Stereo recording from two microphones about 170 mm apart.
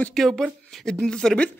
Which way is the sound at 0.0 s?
Centre (ahead or behind).